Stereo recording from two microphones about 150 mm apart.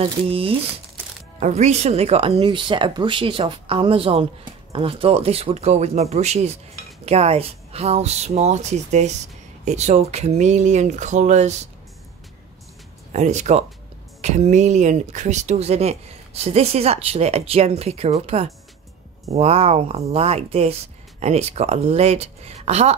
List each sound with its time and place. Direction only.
0.0 s speech: 40° right (ahead or behind)
13.1 s speech: 50° right (ahead or behind)